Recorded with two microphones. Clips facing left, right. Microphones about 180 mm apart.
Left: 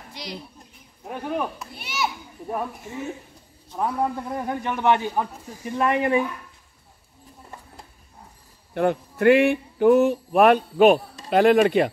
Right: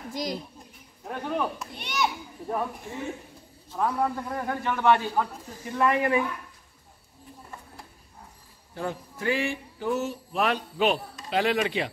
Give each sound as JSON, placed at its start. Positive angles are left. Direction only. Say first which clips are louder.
{"t": 0.1, "sound": "a woman's voice", "louder": "right 5 dB", "side_deg": -45}
{"t": 1.0, "sound": "a man's voice", "louder": "left 2 dB", "side_deg": 10}
{"t": 3.7, "sound": "a man's voice", "louder": "left 2 dB", "side_deg": 15}
{"t": 8.7, "sound": "speech", "louder": "left 11 dB", "side_deg": 65}